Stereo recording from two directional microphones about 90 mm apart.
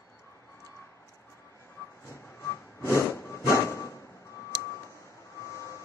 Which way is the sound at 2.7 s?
30° left (ahead or behind).